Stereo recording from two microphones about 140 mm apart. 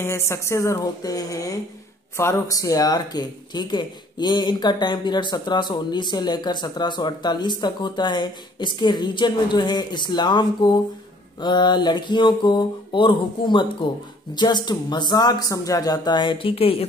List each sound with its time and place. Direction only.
0.0 s speech: 20° left (ahead or behind); by 16.8 s 45° left (ahead or behind)